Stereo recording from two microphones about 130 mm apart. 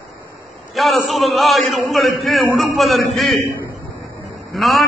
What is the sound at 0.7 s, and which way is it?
A man's voice, centre (ahead or behind).